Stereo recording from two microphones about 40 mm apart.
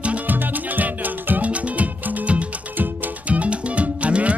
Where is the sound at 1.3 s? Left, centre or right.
Right.